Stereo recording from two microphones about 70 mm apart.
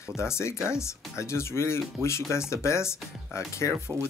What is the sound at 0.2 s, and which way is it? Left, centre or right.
Speech, left.